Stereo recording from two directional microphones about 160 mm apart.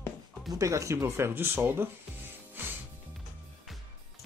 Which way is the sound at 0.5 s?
20° right (ahead or behind).